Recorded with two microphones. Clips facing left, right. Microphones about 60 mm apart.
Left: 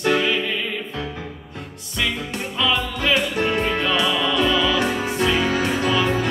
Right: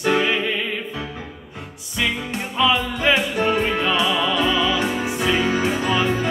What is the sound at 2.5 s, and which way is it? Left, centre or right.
Music, centre.